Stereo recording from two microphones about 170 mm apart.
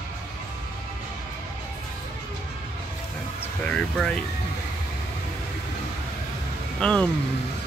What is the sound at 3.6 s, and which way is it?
Speech, 5° left (ahead or behind).